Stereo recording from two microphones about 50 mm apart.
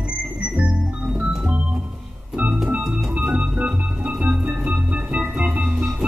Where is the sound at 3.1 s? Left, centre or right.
Right.